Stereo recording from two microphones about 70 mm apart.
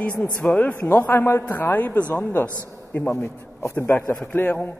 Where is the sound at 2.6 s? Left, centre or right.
Left.